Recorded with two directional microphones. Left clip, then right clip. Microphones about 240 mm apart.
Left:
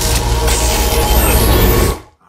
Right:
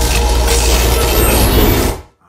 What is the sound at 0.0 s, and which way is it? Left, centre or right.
Music, centre.